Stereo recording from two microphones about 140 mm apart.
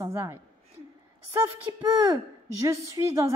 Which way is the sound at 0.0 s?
15° right (ahead or behind).